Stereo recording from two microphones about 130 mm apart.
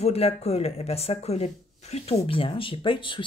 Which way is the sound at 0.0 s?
50° left (ahead or behind).